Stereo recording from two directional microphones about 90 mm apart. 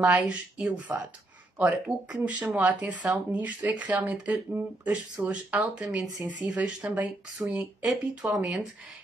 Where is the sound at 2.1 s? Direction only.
15° right (ahead or behind).